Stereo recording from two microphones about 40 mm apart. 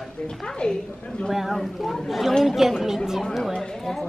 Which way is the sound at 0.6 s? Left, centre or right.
Left.